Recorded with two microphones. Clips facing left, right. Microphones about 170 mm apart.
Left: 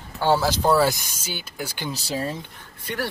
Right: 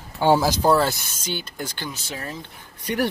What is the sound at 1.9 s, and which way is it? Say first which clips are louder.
Speech: left 5 dB; 30° left (ahead or behind).